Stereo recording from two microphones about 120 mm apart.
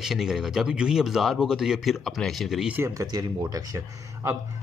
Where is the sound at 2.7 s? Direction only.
25° right (ahead or behind).